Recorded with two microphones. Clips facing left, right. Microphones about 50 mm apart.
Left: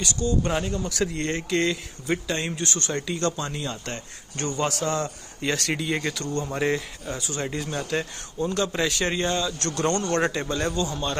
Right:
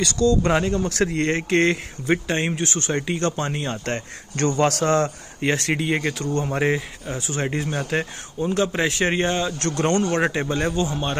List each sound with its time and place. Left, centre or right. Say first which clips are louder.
0.0 s speech: right 6 dB; right